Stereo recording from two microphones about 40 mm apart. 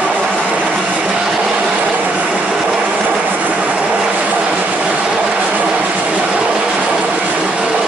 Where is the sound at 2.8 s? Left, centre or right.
Right.